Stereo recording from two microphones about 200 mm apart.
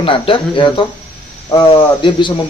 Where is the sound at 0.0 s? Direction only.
25° left (ahead or behind).